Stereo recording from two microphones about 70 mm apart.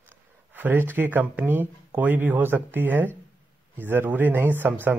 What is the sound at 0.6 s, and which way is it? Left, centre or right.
Speech, right.